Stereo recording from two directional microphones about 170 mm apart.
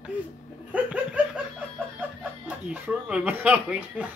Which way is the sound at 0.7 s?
10° right (ahead or behind).